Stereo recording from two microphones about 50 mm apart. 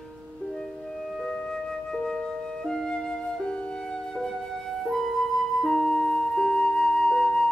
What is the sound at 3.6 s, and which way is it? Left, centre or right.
Music, centre.